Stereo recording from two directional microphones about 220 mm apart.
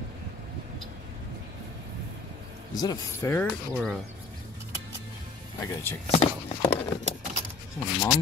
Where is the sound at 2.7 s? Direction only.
15° left (ahead or behind).